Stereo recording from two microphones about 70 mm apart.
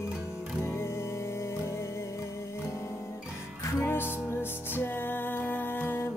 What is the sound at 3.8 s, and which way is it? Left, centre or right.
Music, left.